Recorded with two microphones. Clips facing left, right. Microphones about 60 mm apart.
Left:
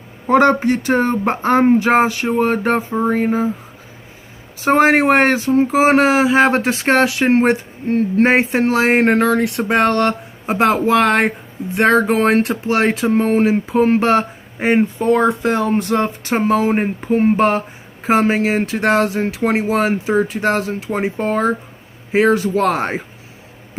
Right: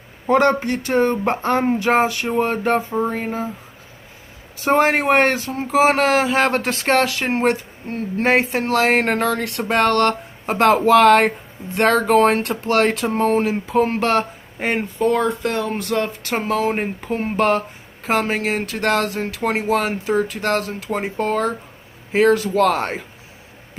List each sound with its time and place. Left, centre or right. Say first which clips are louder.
0.3 s speech: left 3 dB; left
1.5 s speech: left 7 dB; left
1.9 s speech: left 3 dB; centre
4.7 s speech: left 3 dB; left
5.0 s speech: left 3 dB; centre
5.4 s speech: left 4 dB; left
10.6 s speech: right 2 dB; centre
11.7 s speech: left 1 dB; centre
13.1 s speech: left 4 dB; left